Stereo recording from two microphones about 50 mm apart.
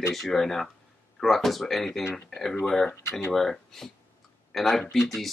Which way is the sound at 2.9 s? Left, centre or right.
Left.